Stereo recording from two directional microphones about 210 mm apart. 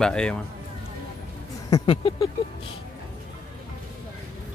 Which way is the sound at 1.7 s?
25° left (ahead or behind).